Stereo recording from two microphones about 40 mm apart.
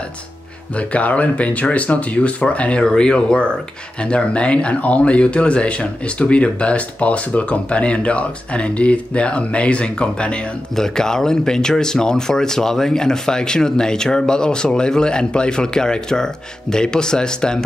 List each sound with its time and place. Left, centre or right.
0.7 s speech: left
2.8 s speech: centre
10.8 s speech: centre